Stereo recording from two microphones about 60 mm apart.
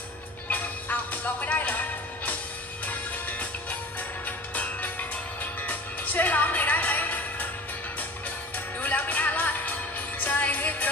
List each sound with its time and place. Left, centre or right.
0.5 s music: left
5.4 s music: left
8.8 s music: left